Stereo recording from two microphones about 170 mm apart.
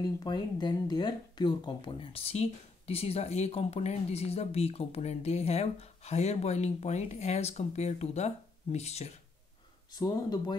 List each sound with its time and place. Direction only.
0.2 s speech: 25° left (ahead or behind)
9.9 s speech: 25° left (ahead or behind)